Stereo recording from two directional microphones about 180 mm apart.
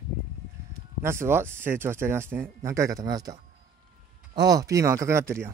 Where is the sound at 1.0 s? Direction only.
15° right (ahead or behind).